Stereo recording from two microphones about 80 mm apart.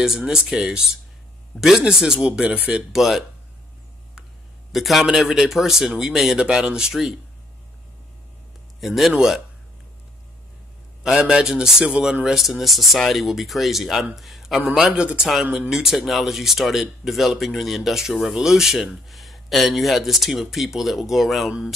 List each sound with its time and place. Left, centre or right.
0.0 s speech: centre
2.9 s a man's voice: centre
4.7 s a man's voice: centre
8.8 s a man's voice: centre
11.1 s a man's voice: centre
15.7 s a man's voice: centre